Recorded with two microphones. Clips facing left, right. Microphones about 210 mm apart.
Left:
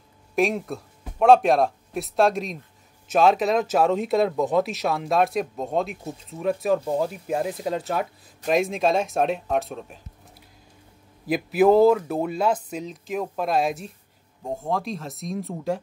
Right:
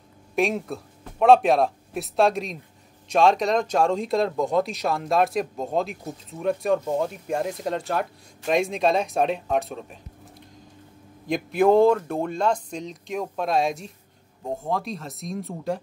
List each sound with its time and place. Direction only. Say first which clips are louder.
0.4 s speech: left 1 dB; centre (ahead or behind)
11.2 s speech: left 1 dB; 5° left (ahead or behind)